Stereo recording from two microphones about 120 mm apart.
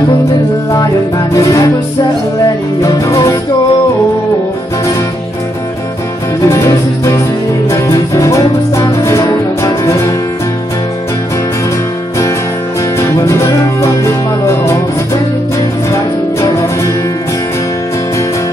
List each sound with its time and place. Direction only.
0.7 s music: 30° left (ahead or behind)
2.8 s music: 30° left (ahead or behind)
6.4 s music: 25° left (ahead or behind)
13.2 s music: 25° left (ahead or behind)
15.9 s music: 25° left (ahead or behind)